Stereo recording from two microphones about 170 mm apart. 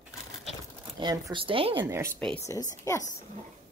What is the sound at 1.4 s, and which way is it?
Speech, 30° right (ahead or behind).